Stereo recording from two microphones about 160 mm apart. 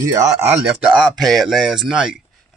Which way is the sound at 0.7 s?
5° right (ahead or behind).